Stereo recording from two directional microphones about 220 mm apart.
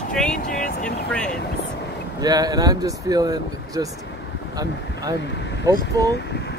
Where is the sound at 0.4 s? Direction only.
40° left (ahead or behind).